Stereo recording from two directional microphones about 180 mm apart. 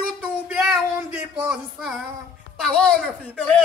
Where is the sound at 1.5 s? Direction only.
5° right (ahead or behind).